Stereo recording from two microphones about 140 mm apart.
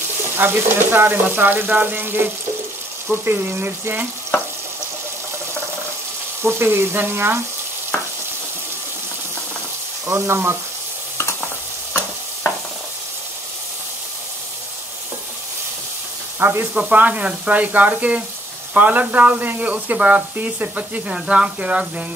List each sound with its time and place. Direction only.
0.4 s speech: 15° right (ahead or behind)
6.4 s speech: 15° right (ahead or behind)
10.0 s speech: 20° right (ahead or behind)
11.1 s stir: 20° left (ahead or behind)
16.3 s speech: 15° right (ahead or behind)